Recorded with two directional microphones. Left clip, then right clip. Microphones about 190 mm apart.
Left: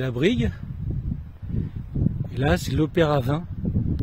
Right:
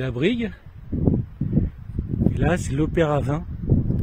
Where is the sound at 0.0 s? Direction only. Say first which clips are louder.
Even; 10° left (ahead or behind).